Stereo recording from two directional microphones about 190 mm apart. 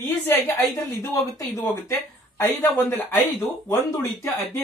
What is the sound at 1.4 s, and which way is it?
Speech, 15° left (ahead or behind).